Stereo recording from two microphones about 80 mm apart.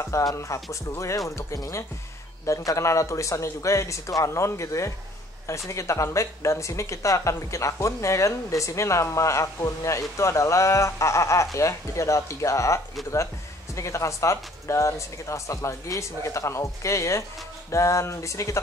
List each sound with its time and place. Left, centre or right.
0.0 s speech: left